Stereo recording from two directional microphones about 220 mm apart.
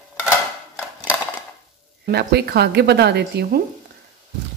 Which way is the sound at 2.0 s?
45° right (ahead or behind).